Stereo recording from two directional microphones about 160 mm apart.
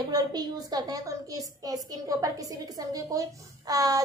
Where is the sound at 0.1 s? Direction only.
25° right (ahead or behind).